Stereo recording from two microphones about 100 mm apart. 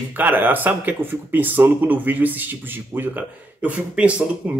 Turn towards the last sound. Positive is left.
turn(degrees=-15)  # may be behind; listen again after turning